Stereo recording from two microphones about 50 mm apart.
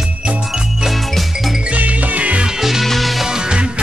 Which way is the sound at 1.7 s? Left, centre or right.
Right.